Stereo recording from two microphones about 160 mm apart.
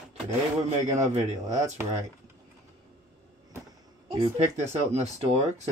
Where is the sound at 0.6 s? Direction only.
45° right (ahead or behind).